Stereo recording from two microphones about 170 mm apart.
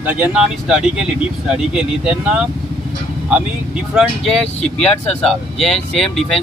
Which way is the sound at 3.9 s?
5° right (ahead or behind).